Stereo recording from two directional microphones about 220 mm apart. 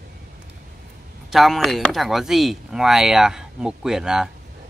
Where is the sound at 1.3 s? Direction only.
Centre (ahead or behind).